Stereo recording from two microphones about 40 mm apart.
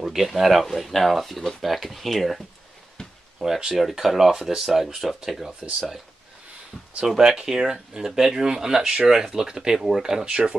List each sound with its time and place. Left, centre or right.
0.0 s speech: centre
3.0 s a sound: left
3.4 s speech: centre
7.2 s speech: centre